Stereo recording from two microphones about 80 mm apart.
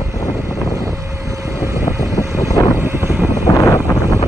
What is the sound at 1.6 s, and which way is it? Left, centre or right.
Vehicle, right.